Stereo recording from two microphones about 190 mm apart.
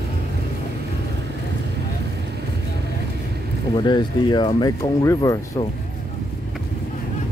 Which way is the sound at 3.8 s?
20° left (ahead or behind).